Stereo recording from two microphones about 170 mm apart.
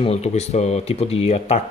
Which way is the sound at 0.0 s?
40° left (ahead or behind).